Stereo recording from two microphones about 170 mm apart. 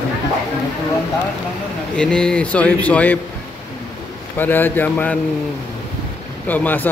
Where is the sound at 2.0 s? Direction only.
5° left (ahead or behind).